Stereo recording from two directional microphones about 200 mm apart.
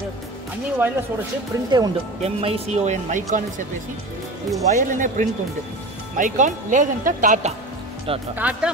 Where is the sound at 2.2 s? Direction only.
30° right (ahead or behind).